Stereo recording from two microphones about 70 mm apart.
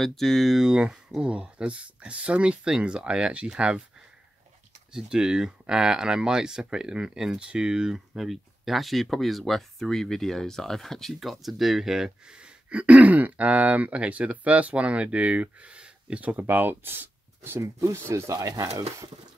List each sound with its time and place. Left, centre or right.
0.0 s speech: centre
4.9 s speech: centre; by 18.4 s right
18.4 s speech: right